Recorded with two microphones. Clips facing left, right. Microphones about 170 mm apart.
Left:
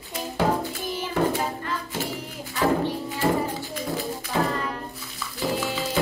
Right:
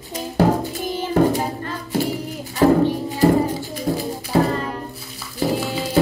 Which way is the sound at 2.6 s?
40° right (ahead or behind).